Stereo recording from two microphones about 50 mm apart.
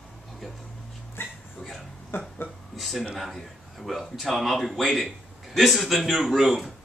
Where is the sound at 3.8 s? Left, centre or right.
Centre.